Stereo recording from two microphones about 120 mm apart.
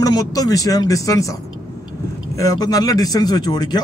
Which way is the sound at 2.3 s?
30° left (ahead or behind).